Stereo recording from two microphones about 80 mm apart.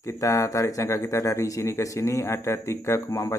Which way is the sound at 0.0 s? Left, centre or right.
Left.